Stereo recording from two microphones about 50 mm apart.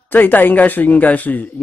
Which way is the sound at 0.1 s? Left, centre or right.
Left.